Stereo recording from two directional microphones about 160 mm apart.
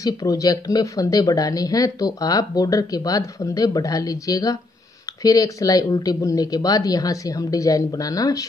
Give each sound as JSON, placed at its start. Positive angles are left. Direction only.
{"t": 0.0, "sound": "speech", "side_deg": 20}